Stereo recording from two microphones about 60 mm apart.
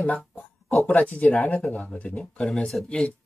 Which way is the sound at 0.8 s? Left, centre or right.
Centre.